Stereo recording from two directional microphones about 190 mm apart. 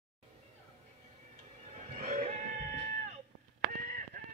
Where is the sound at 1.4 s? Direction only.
35° right (ahead or behind).